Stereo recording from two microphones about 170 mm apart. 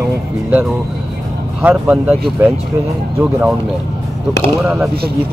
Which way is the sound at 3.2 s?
5° right (ahead or behind).